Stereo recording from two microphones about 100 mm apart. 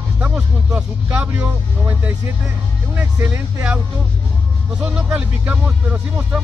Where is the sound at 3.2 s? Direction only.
20° right (ahead or behind).